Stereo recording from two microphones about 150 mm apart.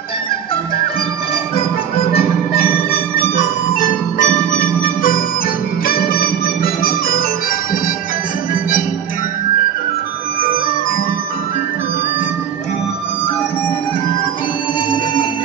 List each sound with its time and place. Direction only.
3.3 s music: 60° left (ahead or behind)
5.9 s music: 80° left